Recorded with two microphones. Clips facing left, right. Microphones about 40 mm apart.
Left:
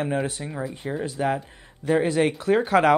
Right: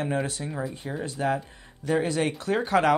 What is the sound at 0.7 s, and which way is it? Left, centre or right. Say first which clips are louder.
Speech: left 4 dB; centre.